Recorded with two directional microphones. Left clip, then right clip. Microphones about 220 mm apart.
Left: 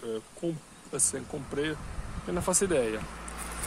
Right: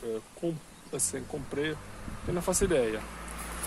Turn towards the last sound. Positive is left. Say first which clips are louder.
# left 1 dB
turn(degrees=-25)  # may be behind; listen again after turning